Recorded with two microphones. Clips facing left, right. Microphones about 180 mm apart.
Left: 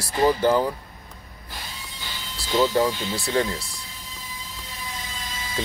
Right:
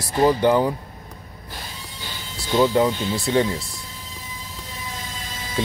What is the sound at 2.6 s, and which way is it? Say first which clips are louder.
Speech: right 3 dB; 25° right (ahead or behind).